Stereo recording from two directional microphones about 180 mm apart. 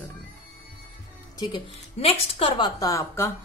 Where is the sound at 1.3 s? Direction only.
25° left (ahead or behind).